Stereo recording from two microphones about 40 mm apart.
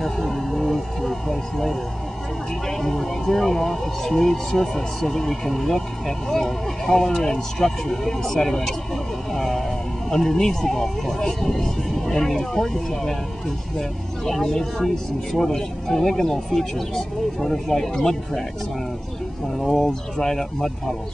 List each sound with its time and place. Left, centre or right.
0.0 s a sound: centre
2.8 s speech: centre
19.6 s speech: centre